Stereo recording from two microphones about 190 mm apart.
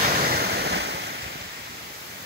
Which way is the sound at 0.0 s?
50° right (ahead or behind).